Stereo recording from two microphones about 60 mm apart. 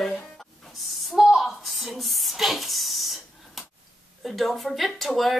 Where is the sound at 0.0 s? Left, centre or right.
Centre.